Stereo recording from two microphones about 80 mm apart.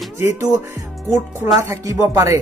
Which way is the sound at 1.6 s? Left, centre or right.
Right.